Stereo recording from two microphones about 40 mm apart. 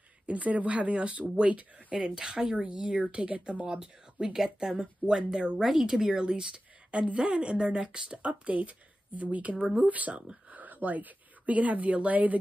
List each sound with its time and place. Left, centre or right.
0.3 s speech: right
2.0 s a woman's voice: centre
5.6 s a woman's voice: centre; by 12.4 s right